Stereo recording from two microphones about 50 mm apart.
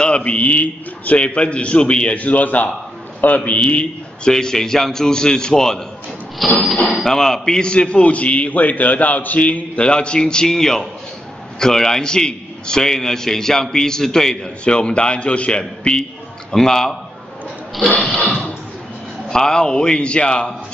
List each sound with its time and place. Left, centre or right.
0.0 s a man's voice: left
16.5 s a man's voice: centre
17.8 s a man's voice: left
18.1 s a man's voice: centre